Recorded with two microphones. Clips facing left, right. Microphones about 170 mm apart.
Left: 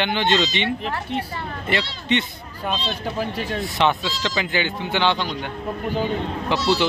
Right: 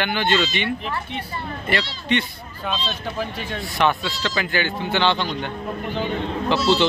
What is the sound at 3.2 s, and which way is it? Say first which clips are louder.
Speech: left 3 dB; 40° left (ahead or behind).